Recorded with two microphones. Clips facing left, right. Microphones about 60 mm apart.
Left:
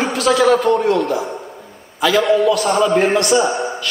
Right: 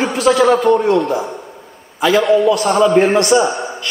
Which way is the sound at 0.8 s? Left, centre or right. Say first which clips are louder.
Right 2 dB; centre.